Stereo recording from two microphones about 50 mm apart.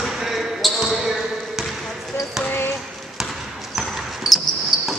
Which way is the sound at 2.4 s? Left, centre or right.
Left.